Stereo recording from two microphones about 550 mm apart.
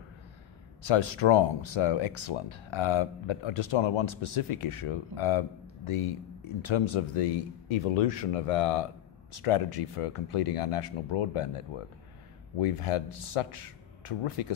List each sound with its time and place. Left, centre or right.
0.8 s a man's voice: left
9.4 s speech: left